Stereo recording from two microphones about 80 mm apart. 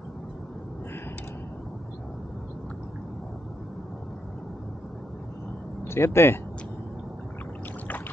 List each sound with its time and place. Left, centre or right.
5.9 s speech: left